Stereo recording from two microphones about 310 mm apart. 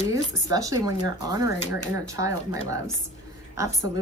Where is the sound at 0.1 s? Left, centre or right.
Centre.